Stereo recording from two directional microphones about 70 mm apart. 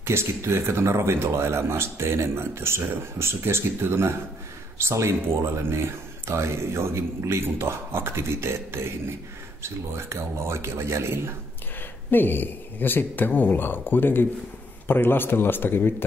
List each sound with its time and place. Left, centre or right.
0.0 s speech: right
12.1 s a man's voice: left